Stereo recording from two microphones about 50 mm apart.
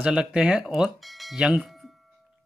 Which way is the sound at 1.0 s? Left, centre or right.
Centre.